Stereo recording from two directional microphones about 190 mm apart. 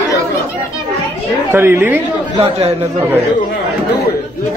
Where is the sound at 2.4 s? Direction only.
30° right (ahead or behind).